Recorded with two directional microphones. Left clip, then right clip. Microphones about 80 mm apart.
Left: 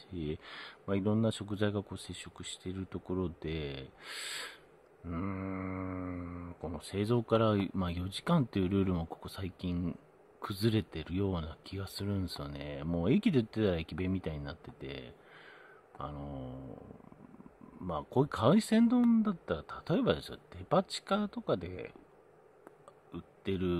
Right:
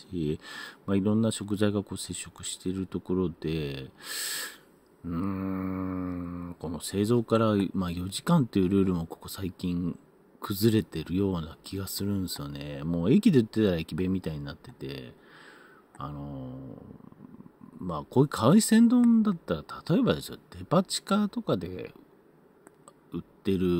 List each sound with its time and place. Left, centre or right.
0.1 s speech: right
5.0 s mantra: centre
5.3 s speech: right
7.1 s speech: centre
16.2 s speech: centre
17.8 s speech: right
23.1 s speech: right